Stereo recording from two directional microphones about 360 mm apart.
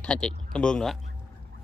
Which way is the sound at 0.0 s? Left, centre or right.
Centre.